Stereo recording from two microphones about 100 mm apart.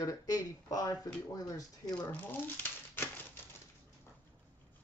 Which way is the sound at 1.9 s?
15° left (ahead or behind).